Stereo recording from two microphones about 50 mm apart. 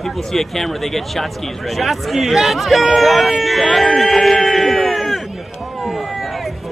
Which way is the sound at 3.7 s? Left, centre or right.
Centre.